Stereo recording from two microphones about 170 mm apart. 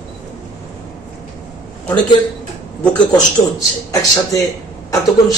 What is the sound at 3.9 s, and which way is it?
Speech, 20° left (ahead or behind).